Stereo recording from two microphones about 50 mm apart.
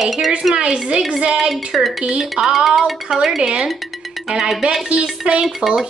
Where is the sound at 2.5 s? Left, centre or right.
Centre.